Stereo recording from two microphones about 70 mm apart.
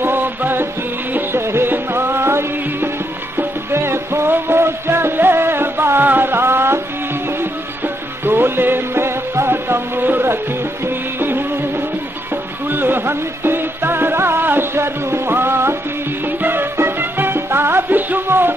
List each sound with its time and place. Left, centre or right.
0.0 s music: right
8.3 s music: right
11.1 s music of bollywood: right
12.6 s music: right